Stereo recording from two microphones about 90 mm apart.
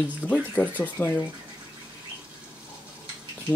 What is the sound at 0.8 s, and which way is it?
Speech, 15° left (ahead or behind).